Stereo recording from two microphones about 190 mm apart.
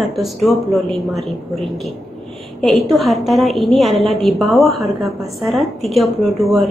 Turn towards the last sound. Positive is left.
turn(degrees=0)  # may be behind; listen again after turning